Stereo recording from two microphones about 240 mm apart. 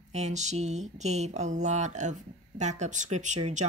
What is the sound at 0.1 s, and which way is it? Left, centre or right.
Speech, right.